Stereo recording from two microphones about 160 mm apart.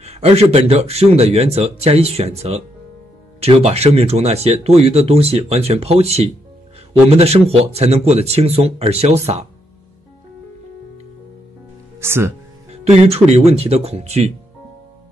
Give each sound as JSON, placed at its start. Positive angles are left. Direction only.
{"t": 0.0, "sound": "speech", "side_deg": -40}
{"t": 12.0, "sound": "speech", "side_deg": -15}
{"t": 12.9, "sound": "speech", "side_deg": -40}